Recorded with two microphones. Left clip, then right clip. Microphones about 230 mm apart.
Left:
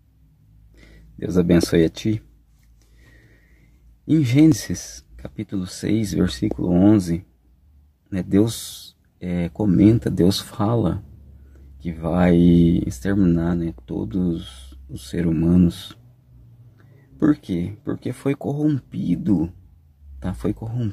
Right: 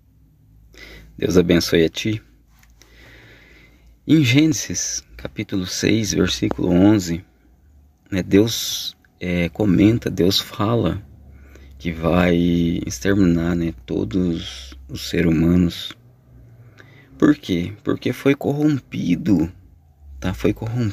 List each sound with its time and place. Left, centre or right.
0.7 s speech: centre
4.1 s speech: centre